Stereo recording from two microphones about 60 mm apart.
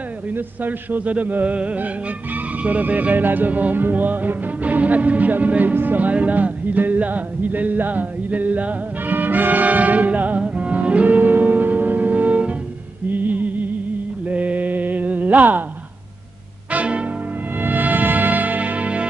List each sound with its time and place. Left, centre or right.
0.3 s speech: right
2.3 s music: right
14.3 s mantra: right
16.7 s music: right